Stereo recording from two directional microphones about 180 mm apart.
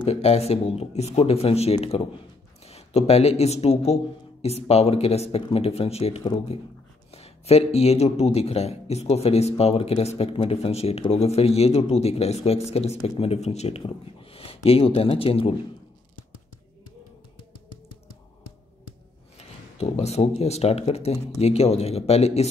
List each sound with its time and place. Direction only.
0.0 s speech: 35° left (ahead or behind)
6.2 s speech: 25° left (ahead or behind)
7.1 s speech: 35° left (ahead or behind)
19.3 s speech: 35° left (ahead or behind)